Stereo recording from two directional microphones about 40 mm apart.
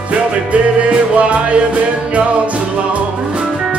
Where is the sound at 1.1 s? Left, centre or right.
Right.